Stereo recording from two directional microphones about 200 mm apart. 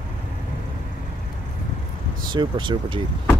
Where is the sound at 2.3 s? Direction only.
20° right (ahead or behind).